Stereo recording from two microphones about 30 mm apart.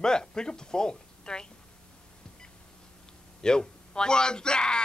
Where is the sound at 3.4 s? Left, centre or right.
Left.